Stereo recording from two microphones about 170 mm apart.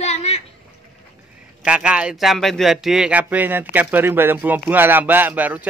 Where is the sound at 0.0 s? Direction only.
40° left (ahead or behind).